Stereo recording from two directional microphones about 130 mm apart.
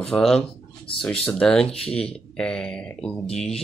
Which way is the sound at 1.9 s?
50° left (ahead or behind).